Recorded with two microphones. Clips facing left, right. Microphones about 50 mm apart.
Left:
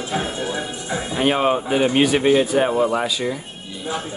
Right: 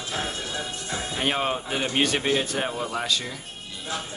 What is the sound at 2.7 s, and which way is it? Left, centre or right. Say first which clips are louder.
Speech: left 10 dB; left.